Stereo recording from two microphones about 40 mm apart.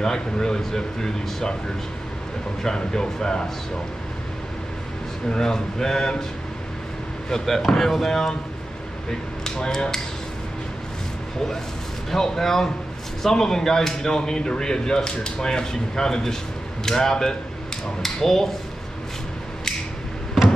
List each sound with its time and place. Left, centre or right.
0.0 s speech: centre
2.6 s speech: centre
5.3 s speech: centre
7.2 s speech: centre
9.4 s a sound: centre
12.1 s speech: centre